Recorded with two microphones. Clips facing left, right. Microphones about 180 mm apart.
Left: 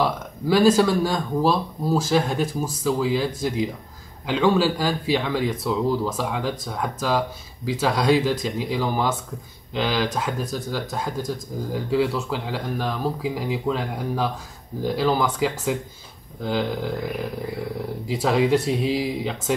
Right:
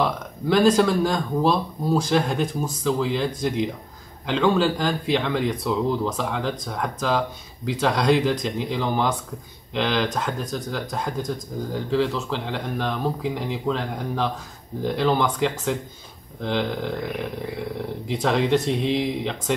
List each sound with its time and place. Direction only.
0.0 s speech: 5° left (ahead or behind)
18.0 s speech: 5° left (ahead or behind)